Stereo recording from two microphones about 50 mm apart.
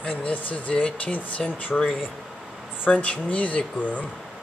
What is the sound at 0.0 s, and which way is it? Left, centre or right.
Speech, left.